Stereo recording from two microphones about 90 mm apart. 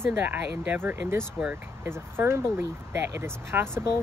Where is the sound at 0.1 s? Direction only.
20° right (ahead or behind).